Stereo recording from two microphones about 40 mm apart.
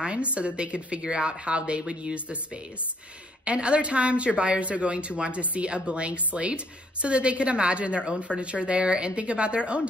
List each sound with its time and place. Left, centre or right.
0.0 s a woman's voice: right